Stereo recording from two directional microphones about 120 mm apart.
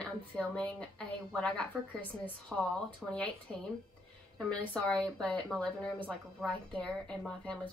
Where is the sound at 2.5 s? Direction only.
15° right (ahead or behind).